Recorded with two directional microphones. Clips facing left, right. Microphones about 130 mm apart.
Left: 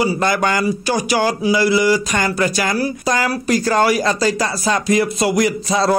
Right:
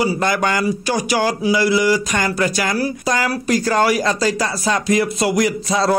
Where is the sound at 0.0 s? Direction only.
30° left (ahead or behind).